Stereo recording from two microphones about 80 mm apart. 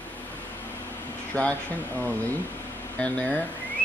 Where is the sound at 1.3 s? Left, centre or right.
Centre.